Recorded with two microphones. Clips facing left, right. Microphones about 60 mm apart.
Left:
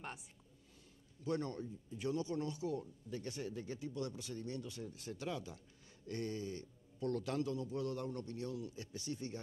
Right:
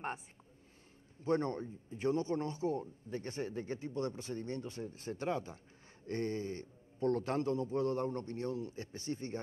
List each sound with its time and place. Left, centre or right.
1.2 s a man's voice: right